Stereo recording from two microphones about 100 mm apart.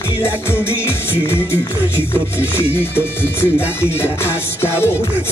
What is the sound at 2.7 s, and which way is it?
Music, 20° left (ahead or behind).